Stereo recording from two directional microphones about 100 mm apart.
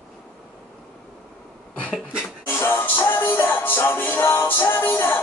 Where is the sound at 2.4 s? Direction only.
25° left (ahead or behind).